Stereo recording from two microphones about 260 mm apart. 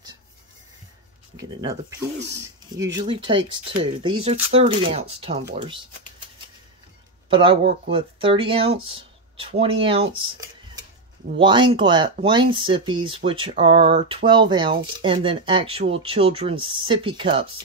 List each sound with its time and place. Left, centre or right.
1.6 s speech: centre
7.2 s speech: centre
11.3 s speech: centre